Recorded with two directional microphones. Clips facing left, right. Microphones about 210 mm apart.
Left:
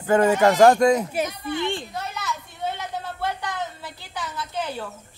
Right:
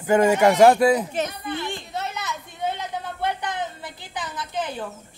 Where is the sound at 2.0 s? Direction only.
20° right (ahead or behind).